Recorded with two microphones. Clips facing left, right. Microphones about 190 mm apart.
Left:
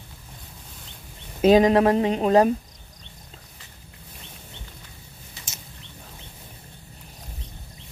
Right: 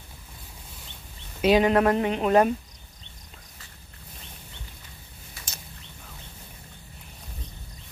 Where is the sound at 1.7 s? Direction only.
30° left (ahead or behind).